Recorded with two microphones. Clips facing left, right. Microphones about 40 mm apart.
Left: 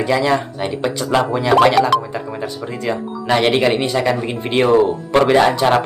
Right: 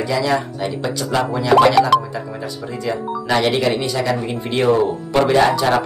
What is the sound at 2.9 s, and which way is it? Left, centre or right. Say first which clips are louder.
Speech: left 1 dB; left.